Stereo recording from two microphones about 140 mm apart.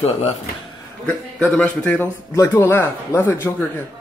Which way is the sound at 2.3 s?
20° left (ahead or behind).